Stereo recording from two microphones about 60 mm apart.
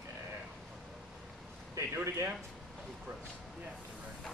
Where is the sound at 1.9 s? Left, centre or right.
Right.